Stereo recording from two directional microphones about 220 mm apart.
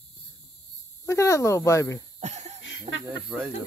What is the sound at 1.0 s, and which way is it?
Speech, 15° left (ahead or behind).